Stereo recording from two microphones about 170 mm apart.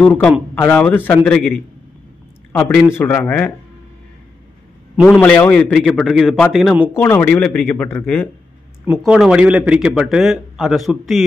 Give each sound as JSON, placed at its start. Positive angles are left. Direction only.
{"t": 0.0, "sound": "a man's voice", "side_deg": 10}
{"t": 2.7, "sound": "a man's voice", "side_deg": 10}
{"t": 5.2, "sound": "speech", "side_deg": 10}
{"t": 6.9, "sound": "a man's voice", "side_deg": 15}
{"t": 8.9, "sound": "speech", "side_deg": 0}